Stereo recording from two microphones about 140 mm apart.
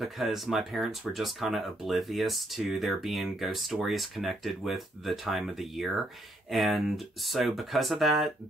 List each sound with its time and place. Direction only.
0.0 s speech: centre (ahead or behind)